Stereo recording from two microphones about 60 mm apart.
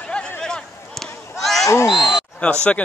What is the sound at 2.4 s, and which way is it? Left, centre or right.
Speech, centre.